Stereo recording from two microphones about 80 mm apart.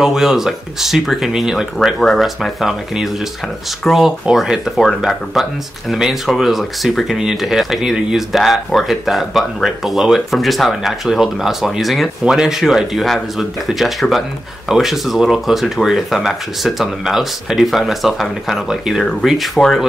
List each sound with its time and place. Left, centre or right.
0.0 s speech: centre